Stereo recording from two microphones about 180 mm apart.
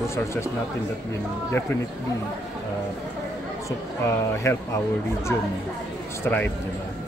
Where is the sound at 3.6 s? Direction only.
15° left (ahead or behind).